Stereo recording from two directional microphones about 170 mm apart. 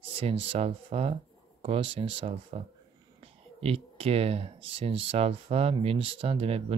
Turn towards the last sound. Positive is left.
turn(degrees=-35)  # may be behind; listen again after turning